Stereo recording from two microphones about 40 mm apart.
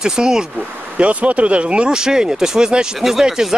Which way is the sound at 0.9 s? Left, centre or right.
Right.